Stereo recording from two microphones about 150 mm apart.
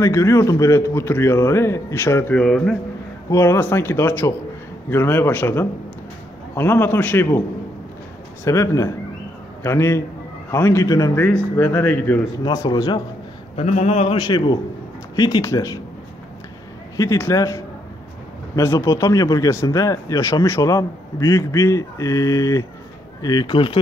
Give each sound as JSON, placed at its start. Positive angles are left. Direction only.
{"t": 0.0, "sound": "a man's voice", "side_deg": 20}
{"t": 3.3, "sound": "a man's voice", "side_deg": 15}
{"t": 8.5, "sound": "a man's voice", "side_deg": 20}
{"t": 12.4, "sound": "speech", "side_deg": 30}
{"t": 13.6, "sound": "speech", "side_deg": 45}
{"t": 14.1, "sound": "speech", "side_deg": 30}
{"t": 16.9, "sound": "speech", "side_deg": 20}